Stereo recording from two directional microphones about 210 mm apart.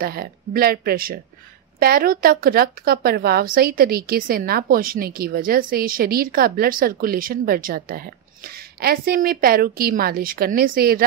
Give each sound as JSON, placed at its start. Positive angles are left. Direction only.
{"t": 0.0, "sound": "a woman's voice", "side_deg": -45}